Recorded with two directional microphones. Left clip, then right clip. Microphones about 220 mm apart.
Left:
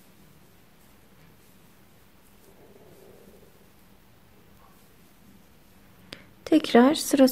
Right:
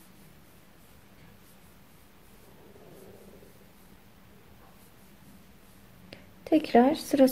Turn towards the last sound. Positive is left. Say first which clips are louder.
# left 3 dB
turn(degrees=20)  # may be behind; listen again after turning